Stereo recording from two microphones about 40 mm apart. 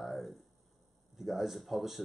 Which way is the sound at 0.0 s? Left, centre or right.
Centre.